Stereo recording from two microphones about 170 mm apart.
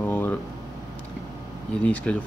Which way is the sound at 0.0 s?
10° left (ahead or behind).